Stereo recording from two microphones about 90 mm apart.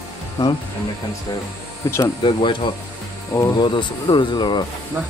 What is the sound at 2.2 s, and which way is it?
Speech, 65° left (ahead or behind).